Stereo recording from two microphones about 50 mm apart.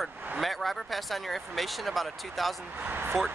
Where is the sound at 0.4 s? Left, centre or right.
Centre.